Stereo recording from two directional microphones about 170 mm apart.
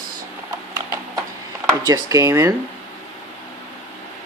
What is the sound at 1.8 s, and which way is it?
Speech, 20° right (ahead or behind).